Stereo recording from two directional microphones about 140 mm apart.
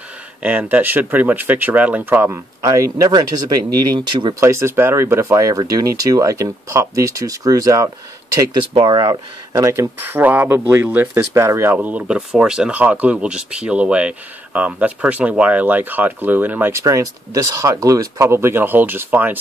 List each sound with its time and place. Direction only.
0.4 s speech: 10° right (ahead or behind); by 4.4 s 30° right (ahead or behind)
4.4 s speech: 20° right (ahead or behind)
8.7 s speech: 35° right (ahead or behind); by 19.3 s 10° right (ahead or behind)